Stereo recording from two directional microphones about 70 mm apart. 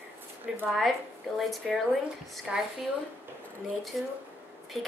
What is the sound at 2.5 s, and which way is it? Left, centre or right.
Speech, centre.